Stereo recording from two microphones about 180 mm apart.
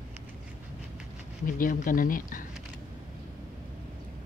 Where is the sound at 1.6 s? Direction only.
50° left (ahead or behind).